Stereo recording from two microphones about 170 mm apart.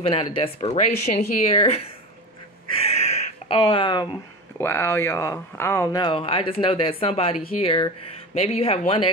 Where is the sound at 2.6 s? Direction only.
35° left (ahead or behind).